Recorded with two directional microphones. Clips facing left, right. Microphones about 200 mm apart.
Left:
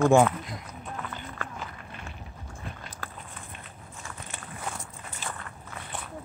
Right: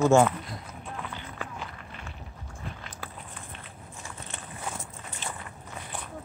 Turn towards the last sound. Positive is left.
turn(degrees=-10)  # may be behind; listen again after turning